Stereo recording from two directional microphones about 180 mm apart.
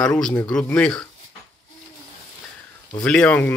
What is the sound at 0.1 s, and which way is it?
Speech, 10° left (ahead or behind).